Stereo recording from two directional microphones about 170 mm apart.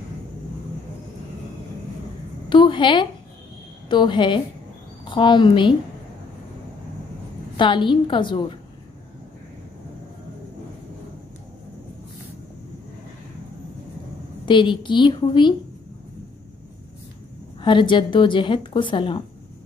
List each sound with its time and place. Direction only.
2.5 s a woman's voice: 30° left (ahead or behind)
7.5 s a woman's voice: 30° left (ahead or behind)
14.4 s a woman's voice: 30° left (ahead or behind)
17.6 s a woman's voice: 30° left (ahead or behind)